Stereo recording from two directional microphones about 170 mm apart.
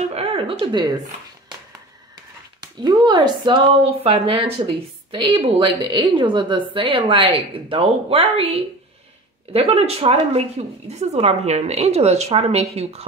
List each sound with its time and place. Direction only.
0.1 s speech: 35° right (ahead or behind)
2.6 s speech: 25° right (ahead or behind)